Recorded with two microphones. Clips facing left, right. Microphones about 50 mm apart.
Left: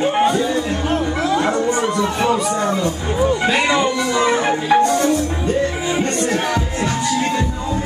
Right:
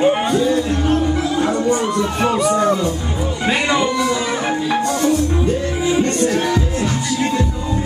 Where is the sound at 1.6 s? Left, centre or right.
Centre.